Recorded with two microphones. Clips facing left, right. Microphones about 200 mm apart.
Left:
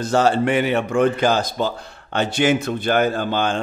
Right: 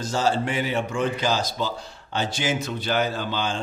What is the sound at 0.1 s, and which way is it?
A man's voice, 60° left (ahead or behind).